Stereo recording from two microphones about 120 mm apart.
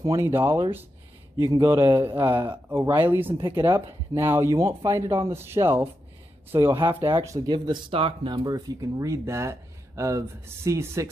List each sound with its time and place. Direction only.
0.0 s speech: 25° right (ahead or behind)
3.3 s speech: 40° right (ahead or behind)
4.1 s speech: 20° right (ahead or behind)
7.3 s speech: 40° right (ahead or behind)
8.5 s speech: 30° right (ahead or behind)